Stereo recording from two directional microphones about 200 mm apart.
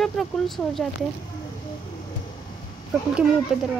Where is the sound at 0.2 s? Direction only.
Centre (ahead or behind).